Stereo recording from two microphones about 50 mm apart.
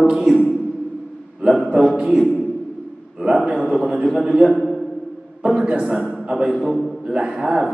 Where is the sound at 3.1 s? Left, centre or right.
Centre.